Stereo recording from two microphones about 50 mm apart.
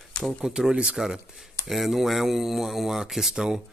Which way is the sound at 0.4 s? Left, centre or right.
Centre.